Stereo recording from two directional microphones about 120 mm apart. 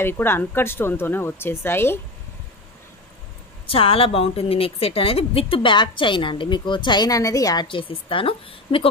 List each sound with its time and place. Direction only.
0.0 s speech: 20° left (ahead or behind)
3.6 s a woman's voice: 50° left (ahead or behind); by 7.6 s 30° left (ahead or behind)
7.6 s a woman's voice: 45° left (ahead or behind)